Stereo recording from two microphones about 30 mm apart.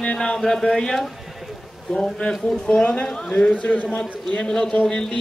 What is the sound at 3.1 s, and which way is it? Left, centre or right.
A man's voice, left.